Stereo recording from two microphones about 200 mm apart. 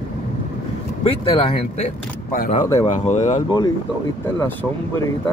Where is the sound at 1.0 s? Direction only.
30° left (ahead or behind).